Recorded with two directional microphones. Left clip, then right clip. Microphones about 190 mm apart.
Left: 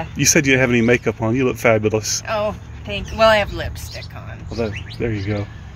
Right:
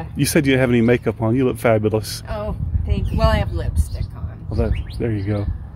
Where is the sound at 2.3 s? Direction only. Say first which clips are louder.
Left 7 dB; 5° left (ahead or behind).